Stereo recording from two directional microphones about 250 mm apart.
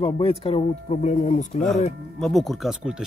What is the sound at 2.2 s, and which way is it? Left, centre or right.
Speech, centre.